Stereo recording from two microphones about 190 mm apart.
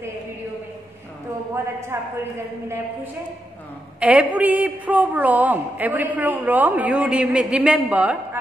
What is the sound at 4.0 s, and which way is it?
A woman's voice, 5° right (ahead or behind).